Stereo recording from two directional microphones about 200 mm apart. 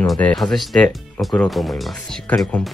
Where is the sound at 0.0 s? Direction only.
5° left (ahead or behind).